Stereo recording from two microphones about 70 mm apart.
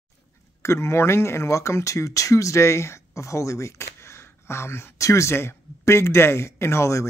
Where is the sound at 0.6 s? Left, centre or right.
Left.